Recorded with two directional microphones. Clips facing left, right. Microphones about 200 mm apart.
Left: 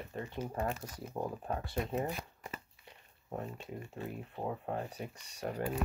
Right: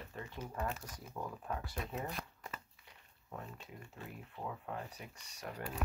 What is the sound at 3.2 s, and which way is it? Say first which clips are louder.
Speech: left 7 dB; 30° left (ahead or behind).